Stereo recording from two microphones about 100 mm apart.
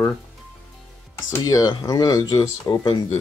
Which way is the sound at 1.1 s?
40° left (ahead or behind).